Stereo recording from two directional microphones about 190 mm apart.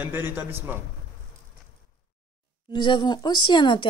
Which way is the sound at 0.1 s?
10° right (ahead or behind).